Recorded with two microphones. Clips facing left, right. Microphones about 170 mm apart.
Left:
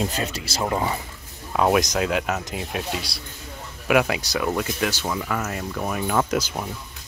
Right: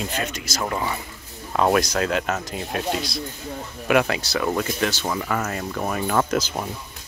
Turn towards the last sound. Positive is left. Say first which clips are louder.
# right 1 dB
turn(degrees=5)  # may be behind; listen again after turning